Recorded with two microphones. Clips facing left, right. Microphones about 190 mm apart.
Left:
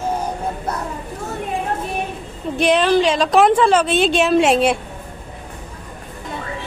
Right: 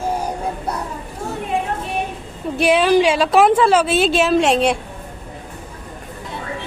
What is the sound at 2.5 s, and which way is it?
A woman's voice, 5° right (ahead or behind).